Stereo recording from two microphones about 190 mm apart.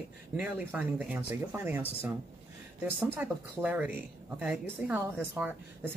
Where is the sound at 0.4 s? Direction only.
10° right (ahead or behind).